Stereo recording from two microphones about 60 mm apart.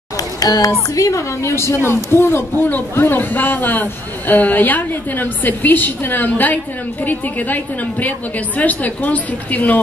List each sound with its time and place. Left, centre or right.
0.4 s speech: left
0.9 s a woman's voice: left